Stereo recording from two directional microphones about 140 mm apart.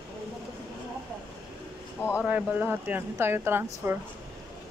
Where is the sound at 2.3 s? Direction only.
10° right (ahead or behind).